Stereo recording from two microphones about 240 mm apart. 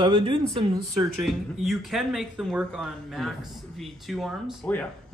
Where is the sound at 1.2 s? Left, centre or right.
Centre.